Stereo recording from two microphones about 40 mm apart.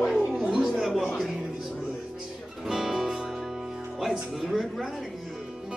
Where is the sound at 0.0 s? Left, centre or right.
Centre.